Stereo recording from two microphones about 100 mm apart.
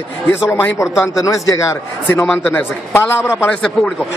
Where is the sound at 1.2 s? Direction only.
30° left (ahead or behind).